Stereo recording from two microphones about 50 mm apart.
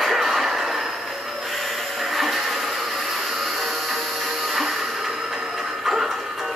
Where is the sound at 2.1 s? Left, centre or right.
Centre.